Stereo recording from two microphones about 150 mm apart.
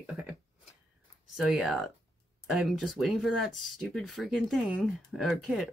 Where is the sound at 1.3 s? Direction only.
5° right (ahead or behind).